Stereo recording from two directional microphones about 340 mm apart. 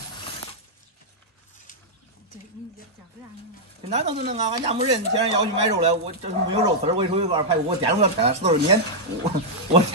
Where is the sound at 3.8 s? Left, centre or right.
Centre.